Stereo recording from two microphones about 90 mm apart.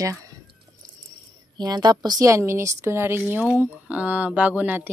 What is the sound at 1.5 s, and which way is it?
A woman's voice, 55° right (ahead or behind).